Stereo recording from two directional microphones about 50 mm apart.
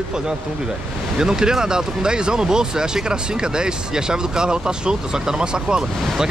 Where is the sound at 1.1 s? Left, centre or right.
Centre.